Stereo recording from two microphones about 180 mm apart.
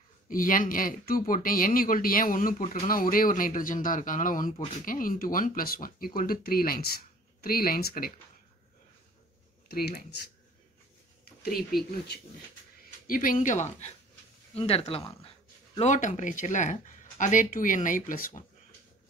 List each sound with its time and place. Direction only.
0.3 s speech: 50° left (ahead or behind)
9.7 s speech: 60° left (ahead or behind)
13.0 s speech: 50° left (ahead or behind)